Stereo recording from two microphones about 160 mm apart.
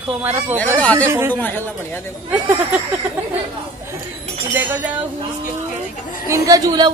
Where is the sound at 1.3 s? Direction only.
10° left (ahead or behind).